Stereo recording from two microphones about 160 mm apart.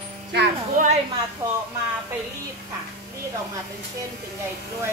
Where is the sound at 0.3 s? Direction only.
90° right.